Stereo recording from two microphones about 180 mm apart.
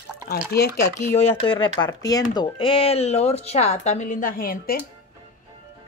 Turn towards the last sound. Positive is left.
turn(degrees=55)  # may be behind; listen again after turning